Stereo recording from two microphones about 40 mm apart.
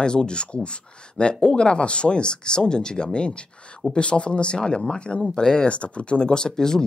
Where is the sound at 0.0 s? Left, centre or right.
Left.